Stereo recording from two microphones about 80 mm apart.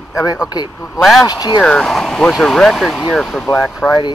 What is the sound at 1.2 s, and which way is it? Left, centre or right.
Speech, left.